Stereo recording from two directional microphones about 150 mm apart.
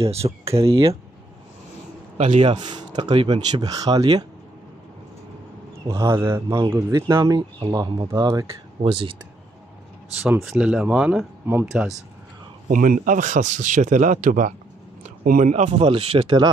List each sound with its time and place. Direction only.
0.0 s speech: 40° right (ahead or behind)
2.1 s speech: 50° right (ahead or behind)
2.5 s speech: 30° right (ahead or behind)
5.9 s speech: 20° right (ahead or behind)
8.8 s speech: 35° right (ahead or behind)
10.2 s speech: 5° right (ahead or behind)
12.6 s speech: 65° right (ahead or behind); by 16.4 s 35° right (ahead or behind)